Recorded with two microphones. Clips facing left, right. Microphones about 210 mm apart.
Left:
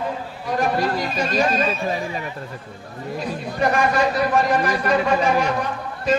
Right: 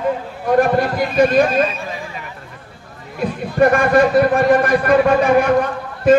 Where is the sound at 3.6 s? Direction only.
55° right (ahead or behind).